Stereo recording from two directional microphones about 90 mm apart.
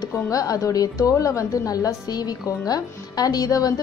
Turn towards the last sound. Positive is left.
turn(degrees=45)  # may be behind; listen again after turning